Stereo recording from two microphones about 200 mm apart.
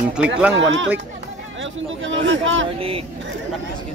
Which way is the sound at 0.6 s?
70° right (ahead or behind).